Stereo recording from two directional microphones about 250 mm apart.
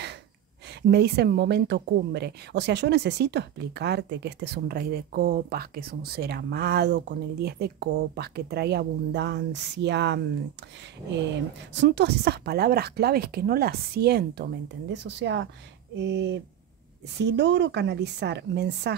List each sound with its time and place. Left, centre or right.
0.8 s speech: right
11.7 s a woman's voice: right